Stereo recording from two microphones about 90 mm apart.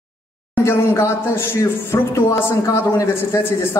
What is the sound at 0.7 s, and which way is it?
A man's voice, 30° left (ahead or behind).